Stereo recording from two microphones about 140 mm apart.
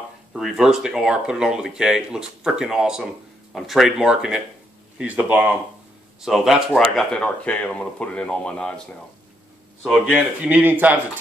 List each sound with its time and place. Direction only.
0.3 s speech: centre (ahead or behind)
9.8 s speech: 5° right (ahead or behind)